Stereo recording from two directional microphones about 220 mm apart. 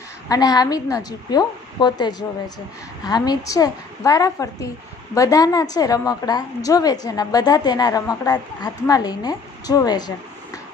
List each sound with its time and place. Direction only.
0.3 s a woman's voice: 15° left (ahead or behind)